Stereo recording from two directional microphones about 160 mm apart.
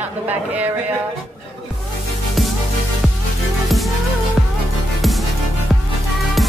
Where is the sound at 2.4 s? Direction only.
Centre (ahead or behind).